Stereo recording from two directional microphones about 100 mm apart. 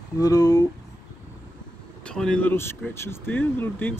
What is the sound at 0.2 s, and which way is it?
Speech, 40° left (ahead or behind).